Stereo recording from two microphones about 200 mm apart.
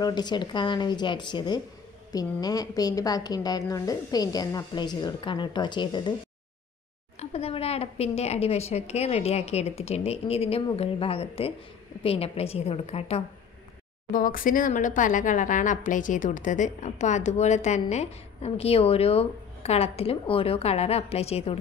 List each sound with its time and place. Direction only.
0.0 s a woman's voice: 20° left (ahead or behind)
7.2 s a woman's voice: 30° left (ahead or behind)
14.1 s speech: 45° left (ahead or behind)